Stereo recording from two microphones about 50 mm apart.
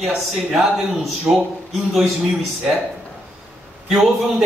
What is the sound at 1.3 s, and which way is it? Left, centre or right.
Speech, centre.